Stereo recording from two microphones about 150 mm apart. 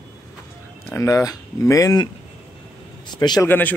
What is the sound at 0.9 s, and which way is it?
Speech, 20° left (ahead or behind).